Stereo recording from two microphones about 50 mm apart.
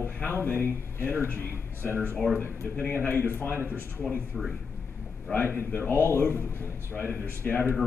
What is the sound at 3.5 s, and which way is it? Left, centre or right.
Speech, right.